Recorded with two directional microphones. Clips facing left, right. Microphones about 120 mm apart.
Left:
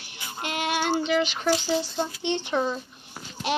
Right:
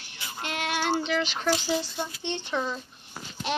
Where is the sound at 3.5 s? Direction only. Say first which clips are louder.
Left 3 dB; 5° left (ahead or behind).